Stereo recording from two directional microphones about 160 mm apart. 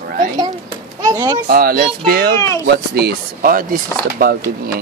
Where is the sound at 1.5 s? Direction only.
70° right (ahead or behind).